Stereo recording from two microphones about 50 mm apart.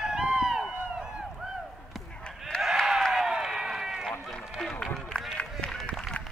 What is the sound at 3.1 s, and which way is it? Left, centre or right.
Run, centre.